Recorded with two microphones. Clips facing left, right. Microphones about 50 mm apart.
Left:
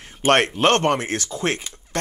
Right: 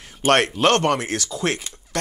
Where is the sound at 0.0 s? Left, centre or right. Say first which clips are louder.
Even; left.